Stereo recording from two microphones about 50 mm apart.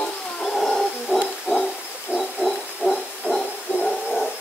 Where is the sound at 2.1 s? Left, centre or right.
Centre.